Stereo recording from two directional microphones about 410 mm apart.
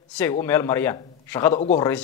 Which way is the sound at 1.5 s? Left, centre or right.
Centre.